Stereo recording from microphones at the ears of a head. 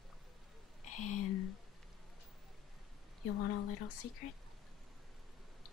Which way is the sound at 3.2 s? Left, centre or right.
Left.